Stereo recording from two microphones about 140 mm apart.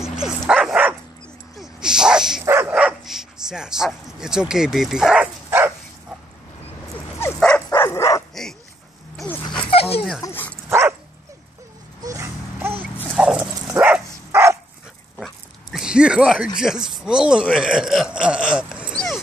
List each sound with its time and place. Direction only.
0.0 s dog: 5° right (ahead or behind)
2.4 s dog: 15° right (ahead or behind)
3.4 s speech: 5° right (ahead or behind)
6.9 s dog: 20° left (ahead or behind)
9.7 s dog: 45° left (ahead or behind)
10.2 s dog: 15° left (ahead or behind)
10.7 s dog: 15° right (ahead or behind)
12.0 s dog: 20° right (ahead or behind)
13.1 s dog: 5° right (ahead or behind); by 14.6 s 20° right (ahead or behind)
15.1 s dog: centre (ahead or behind)
16.5 s speech: 5° right (ahead or behind)
18.9 s dog: 5° left (ahead or behind)